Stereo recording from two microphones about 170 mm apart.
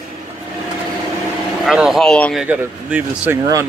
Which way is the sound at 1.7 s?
Centre (ahead or behind).